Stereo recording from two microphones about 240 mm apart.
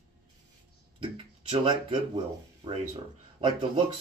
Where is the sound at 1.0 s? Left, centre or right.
Right.